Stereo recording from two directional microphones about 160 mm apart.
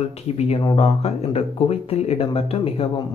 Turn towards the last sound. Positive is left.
turn(degrees=35)  # may be behind; listen again after turning